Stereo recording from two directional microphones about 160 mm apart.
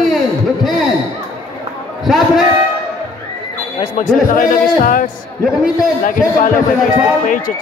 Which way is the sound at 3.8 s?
50° left (ahead or behind).